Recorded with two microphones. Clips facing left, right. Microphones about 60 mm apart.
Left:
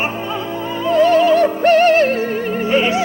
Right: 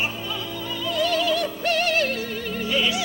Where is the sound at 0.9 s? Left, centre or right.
Left.